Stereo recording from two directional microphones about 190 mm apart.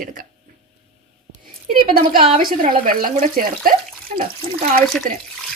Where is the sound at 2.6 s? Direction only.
45° right (ahead or behind).